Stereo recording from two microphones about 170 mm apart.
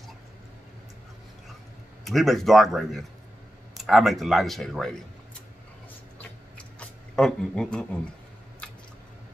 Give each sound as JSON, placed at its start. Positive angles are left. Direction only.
{"t": 2.0, "sound": "speech", "side_deg": 0}
{"t": 7.2, "sound": "speech", "side_deg": 5}